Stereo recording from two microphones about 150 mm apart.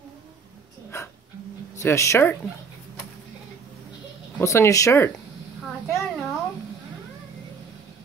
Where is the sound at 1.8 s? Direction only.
20° left (ahead or behind).